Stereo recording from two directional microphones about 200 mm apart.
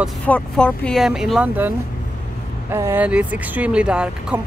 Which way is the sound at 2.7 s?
10° right (ahead or behind).